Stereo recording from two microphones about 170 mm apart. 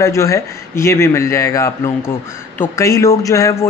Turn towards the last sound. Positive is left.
turn(degrees=20)  # may be behind; listen again after turning